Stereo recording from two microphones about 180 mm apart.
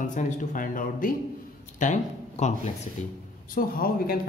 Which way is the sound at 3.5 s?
55° left (ahead or behind).